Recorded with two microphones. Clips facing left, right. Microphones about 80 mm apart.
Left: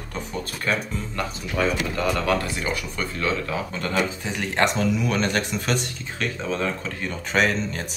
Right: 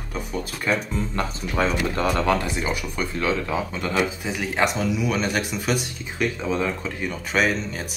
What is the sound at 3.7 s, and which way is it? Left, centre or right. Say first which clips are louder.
Speech: left 1 dB; centre.